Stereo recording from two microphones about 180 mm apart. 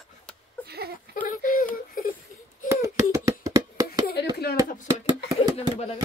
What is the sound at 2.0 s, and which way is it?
Whimper, 50° left (ahead or behind).